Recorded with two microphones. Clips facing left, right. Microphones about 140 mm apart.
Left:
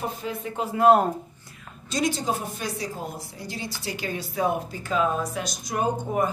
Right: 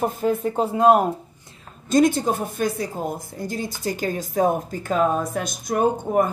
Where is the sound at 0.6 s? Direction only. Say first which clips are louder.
Right 1 dB; 20° right (ahead or behind).